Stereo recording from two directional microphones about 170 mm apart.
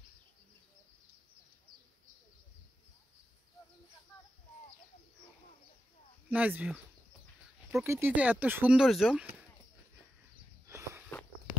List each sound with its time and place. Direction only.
6.3 s speech: 10° right (ahead or behind)
7.8 s speech: 15° right (ahead or behind)
10.7 s walk: 15° right (ahead or behind)